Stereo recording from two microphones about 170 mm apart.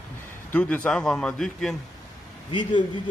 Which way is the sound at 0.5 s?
5° left (ahead or behind).